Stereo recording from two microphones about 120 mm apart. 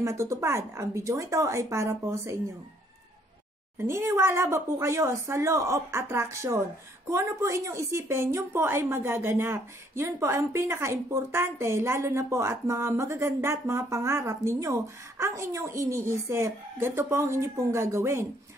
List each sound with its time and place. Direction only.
0.2 s a woman's voice: 25° right (ahead or behind)
3.7 s a woman's voice: 20° right (ahead or behind)